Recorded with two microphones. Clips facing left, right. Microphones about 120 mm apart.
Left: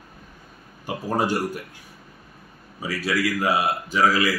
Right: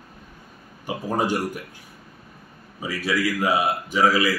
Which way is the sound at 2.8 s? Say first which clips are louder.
Even; 20° right (ahead or behind).